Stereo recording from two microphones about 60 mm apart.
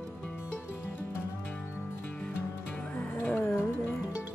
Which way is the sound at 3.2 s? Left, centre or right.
Left.